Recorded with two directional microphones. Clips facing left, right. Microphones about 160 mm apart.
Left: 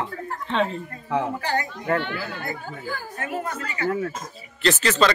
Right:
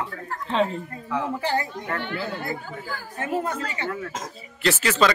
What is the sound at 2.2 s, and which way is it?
Speech, 25° right (ahead or behind).